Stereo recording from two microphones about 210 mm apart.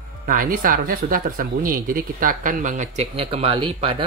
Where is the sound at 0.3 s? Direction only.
40° right (ahead or behind).